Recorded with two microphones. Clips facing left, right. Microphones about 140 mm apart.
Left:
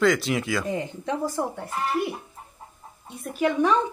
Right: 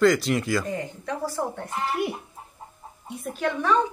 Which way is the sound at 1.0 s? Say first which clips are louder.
Left 2 dB; 20° left (ahead or behind).